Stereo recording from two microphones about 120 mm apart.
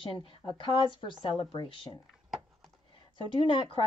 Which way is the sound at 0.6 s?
45° left (ahead or behind).